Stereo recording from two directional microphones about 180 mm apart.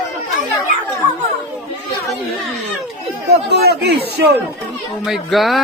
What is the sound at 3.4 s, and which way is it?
Speech, 65° right (ahead or behind).